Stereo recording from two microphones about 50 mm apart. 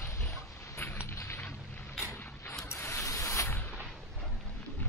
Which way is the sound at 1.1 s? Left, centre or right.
Left.